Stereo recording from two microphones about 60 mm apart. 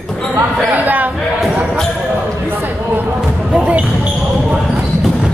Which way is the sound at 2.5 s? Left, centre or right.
Right.